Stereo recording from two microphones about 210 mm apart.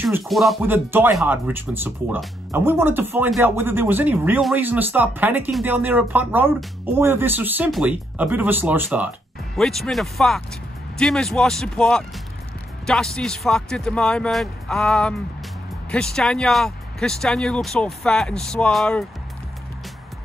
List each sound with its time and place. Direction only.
0.3 s speech: centre (ahead or behind)